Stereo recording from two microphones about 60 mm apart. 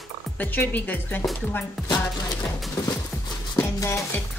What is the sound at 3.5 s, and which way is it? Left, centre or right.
Music, left.